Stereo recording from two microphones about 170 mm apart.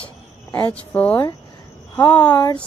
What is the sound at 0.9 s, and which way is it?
Speech, 10° left (ahead or behind).